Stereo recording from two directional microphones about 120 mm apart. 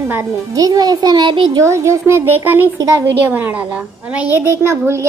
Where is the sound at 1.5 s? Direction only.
25° right (ahead or behind).